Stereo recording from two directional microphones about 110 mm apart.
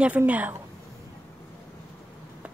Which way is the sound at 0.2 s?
15° right (ahead or behind).